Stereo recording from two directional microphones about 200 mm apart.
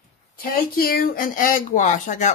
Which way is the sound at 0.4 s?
50° left (ahead or behind).